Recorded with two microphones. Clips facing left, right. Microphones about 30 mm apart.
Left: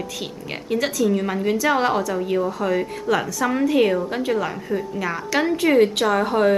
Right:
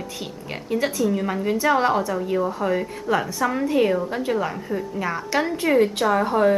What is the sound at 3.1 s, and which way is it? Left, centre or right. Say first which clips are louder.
Speech: left 1 dB; left.